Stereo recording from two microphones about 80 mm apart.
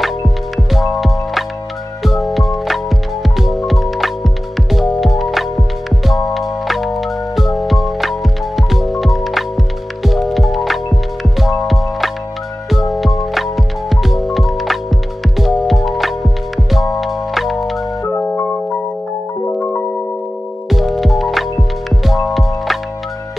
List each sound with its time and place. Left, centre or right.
0.7 s music: centre
18.3 s music: left
20.7 s music: centre